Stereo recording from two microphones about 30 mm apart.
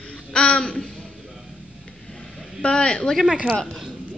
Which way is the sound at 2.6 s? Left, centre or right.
Left.